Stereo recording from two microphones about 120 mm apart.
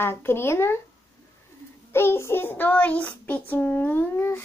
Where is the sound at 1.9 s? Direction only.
20° left (ahead or behind).